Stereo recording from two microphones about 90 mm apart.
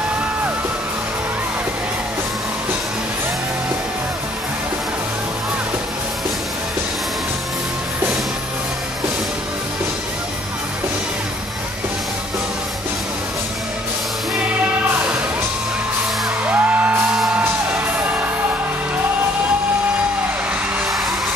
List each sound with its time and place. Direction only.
16.4 s music: 20° right (ahead or behind)